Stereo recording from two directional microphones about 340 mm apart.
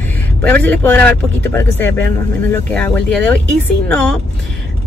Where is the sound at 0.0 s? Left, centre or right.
Centre.